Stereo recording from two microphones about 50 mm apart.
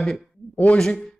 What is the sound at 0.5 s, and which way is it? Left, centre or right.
Speech, left.